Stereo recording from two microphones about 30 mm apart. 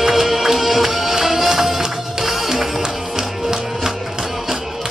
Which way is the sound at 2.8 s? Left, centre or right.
Centre.